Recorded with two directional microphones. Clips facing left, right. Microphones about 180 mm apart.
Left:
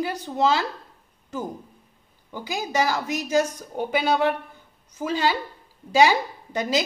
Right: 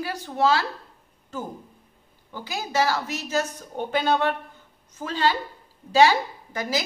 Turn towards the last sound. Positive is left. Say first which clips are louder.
# left 3 dB
turn(degrees=20)  # may be behind; listen again after turning